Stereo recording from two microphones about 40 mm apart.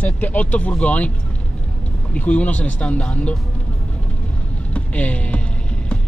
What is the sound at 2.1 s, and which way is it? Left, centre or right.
Speech, left.